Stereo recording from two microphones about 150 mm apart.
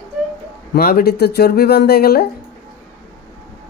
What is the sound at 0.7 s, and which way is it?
Speech, 85° left.